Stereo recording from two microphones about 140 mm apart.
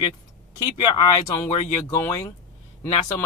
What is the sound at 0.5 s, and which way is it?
Speech, 25° left (ahead or behind).